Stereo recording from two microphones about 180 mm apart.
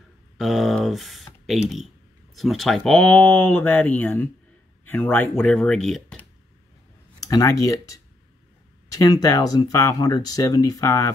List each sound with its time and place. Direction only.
0.4 s speech: centre (ahead or behind)
7.2 s speech: 20° left (ahead or behind)